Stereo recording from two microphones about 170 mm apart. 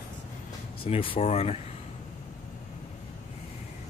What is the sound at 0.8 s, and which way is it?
Speech, 35° left (ahead or behind).